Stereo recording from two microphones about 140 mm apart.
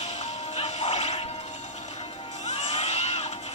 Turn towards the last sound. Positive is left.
turn(degrees=50)  # may be behind; listen again after turning